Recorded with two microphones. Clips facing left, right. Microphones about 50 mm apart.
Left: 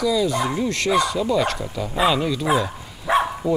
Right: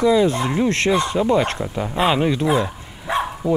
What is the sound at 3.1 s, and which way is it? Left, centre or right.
Bow-wow, centre.